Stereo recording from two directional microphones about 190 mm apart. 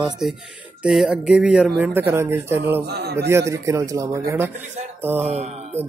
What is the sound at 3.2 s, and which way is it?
Speech, 15° right (ahead or behind).